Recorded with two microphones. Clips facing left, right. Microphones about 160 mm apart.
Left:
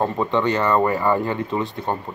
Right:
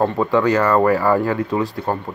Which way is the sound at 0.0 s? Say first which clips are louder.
Right 4 dB; centre (ahead or behind).